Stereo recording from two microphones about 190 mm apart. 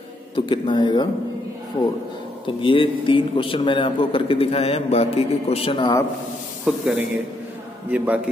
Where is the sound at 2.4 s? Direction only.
25° left (ahead or behind).